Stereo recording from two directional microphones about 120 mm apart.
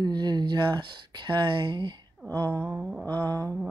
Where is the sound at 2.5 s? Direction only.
15° left (ahead or behind).